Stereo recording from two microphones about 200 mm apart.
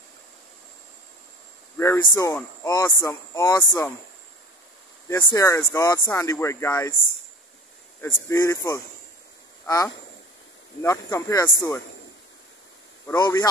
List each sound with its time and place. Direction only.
1.8 s speech: 15° left (ahead or behind)
5.0 s speech: 15° left (ahead or behind)
8.0 s speech: 15° left (ahead or behind)
13.0 s speech: 15° left (ahead or behind)